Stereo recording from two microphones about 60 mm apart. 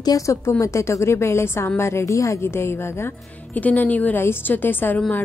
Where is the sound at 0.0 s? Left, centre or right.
Left.